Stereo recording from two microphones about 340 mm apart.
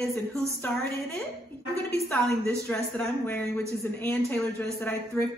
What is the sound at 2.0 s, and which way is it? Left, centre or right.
A woman's voice, centre.